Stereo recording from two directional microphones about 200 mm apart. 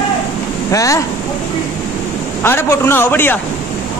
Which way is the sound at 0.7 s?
15° left (ahead or behind).